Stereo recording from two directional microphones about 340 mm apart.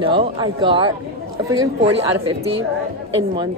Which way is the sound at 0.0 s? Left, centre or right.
Centre.